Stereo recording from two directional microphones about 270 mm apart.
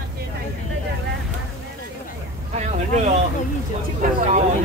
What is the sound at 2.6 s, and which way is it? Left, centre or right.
Speech, right.